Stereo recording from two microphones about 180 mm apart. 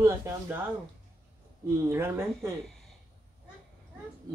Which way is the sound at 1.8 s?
15° right (ahead or behind).